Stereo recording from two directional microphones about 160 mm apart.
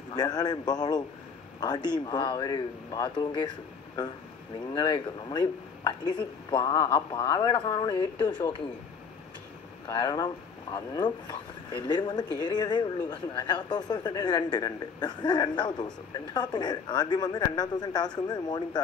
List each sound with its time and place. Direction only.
0.1 s speech: 25° left (ahead or behind)
9.8 s speech: 25° left (ahead or behind)